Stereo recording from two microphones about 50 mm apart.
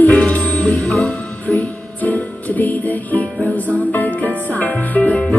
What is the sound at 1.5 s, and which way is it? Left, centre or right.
Music, left.